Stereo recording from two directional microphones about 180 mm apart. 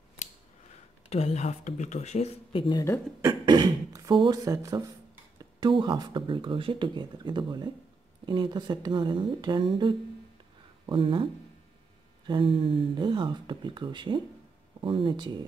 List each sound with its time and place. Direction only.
1.0 s speech: 35° left (ahead or behind)
3.3 s beatboxing: 25° right (ahead or behind)
5.6 s speech: 25° right (ahead or behind)
12.3 s speech: 30° right (ahead or behind)